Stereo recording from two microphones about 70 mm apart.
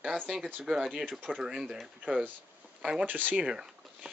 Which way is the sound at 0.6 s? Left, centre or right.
Centre.